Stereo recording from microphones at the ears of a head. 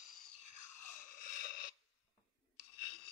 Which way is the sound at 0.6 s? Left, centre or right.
Left.